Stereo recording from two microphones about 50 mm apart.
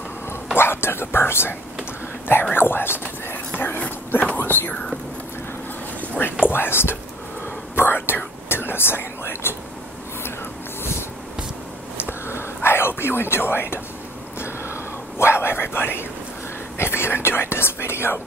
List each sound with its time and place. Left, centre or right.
0.6 s speech: left
5.9 s a sound: left
6.4 s speech: left
7.7 s whispering: left
12.0 s whispering: left
14.4 s whispering: left
16.7 s speech: left